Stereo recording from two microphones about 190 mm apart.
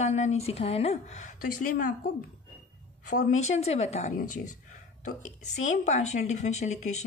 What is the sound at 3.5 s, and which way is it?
A woman's voice, 35° left (ahead or behind).